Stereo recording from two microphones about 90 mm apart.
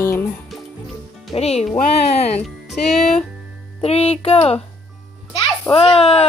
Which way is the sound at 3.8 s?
90° left.